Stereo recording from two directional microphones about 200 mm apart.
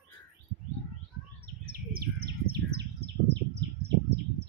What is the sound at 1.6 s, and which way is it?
Bird, 50° right (ahead or behind).